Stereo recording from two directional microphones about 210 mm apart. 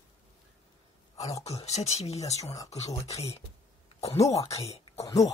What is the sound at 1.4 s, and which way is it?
Speech, 30° left (ahead or behind).